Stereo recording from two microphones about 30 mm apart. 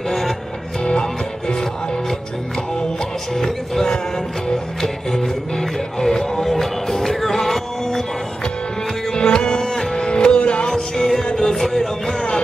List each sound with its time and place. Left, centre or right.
1.0 s music: centre
3.3 s music: centre
4.8 s music: centre
9.1 s music: left
10.7 s music: centre